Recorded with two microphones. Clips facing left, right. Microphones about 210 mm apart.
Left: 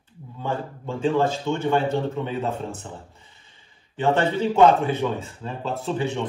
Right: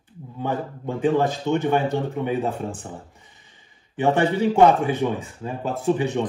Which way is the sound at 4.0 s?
15° right (ahead or behind).